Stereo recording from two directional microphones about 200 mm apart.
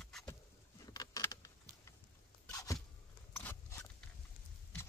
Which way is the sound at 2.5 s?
15° left (ahead or behind).